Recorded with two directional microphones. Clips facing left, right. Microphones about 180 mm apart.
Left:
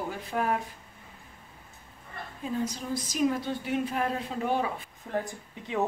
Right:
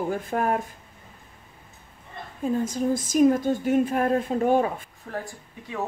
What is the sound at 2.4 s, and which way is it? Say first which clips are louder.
Speech: right 8 dB; 50° right (ahead or behind).